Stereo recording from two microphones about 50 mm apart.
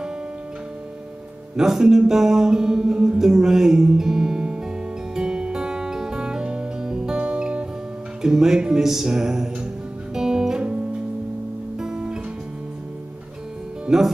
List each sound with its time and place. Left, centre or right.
1.6 s music: centre
11.8 s music: centre
13.8 s speech: centre